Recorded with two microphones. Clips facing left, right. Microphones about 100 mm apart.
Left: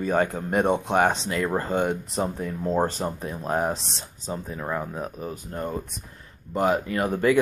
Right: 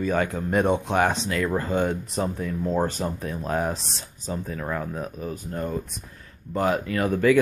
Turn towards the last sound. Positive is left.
turn(degrees=30)  # may be behind; listen again after turning